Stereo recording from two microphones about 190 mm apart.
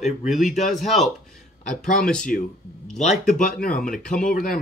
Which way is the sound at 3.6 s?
45° left (ahead or behind).